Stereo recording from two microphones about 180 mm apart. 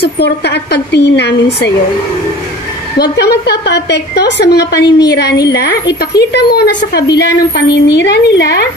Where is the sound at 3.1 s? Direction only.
65° left (ahead or behind).